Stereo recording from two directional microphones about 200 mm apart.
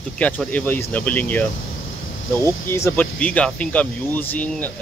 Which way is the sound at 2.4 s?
15° left (ahead or behind).